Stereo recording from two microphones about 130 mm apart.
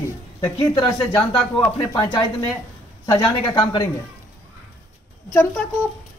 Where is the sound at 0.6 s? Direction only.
35° left (ahead or behind).